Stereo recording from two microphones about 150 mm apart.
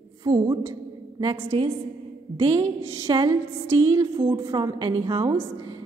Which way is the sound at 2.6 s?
20° right (ahead or behind).